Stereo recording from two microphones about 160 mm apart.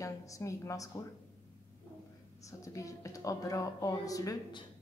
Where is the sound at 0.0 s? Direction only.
20° left (ahead or behind).